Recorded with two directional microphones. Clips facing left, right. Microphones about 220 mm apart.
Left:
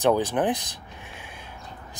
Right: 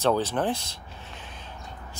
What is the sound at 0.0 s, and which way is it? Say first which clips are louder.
Speech: left 2 dB; 15° left (ahead or behind).